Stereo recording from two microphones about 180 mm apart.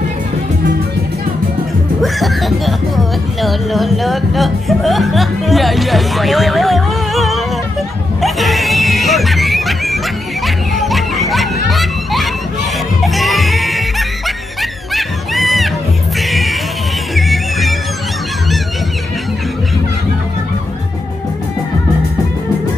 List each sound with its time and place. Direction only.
2.0 s speech: centre (ahead or behind)
8.2 s music: centre (ahead or behind)